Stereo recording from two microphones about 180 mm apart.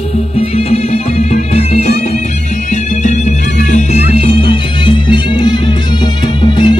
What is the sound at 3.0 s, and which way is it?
Music, 40° left (ahead or behind).